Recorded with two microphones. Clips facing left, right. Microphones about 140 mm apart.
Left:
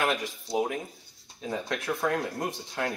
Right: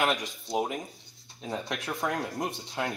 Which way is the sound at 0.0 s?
20° right (ahead or behind).